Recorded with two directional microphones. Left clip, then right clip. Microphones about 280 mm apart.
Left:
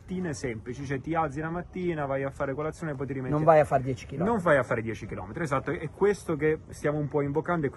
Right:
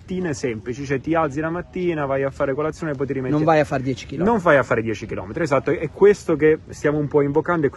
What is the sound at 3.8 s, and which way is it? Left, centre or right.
Speech, left.